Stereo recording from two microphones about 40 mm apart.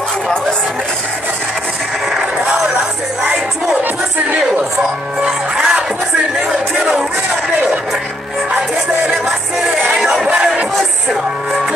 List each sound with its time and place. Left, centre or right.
2.0 s music: centre
3.8 s crowd: right
5.2 s music: right
8.5 s music: centre
9.9 s music: centre
10.2 s music: centre